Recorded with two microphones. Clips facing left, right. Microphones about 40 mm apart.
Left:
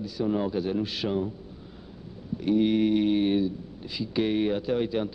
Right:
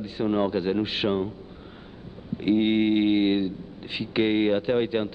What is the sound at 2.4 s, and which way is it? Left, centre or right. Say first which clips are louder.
Speech: right 1 dB; right.